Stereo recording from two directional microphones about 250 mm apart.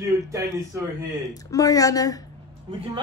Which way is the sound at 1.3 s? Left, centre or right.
Centre.